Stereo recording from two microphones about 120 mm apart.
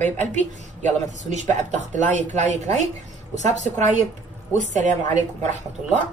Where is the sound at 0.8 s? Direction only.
90° right.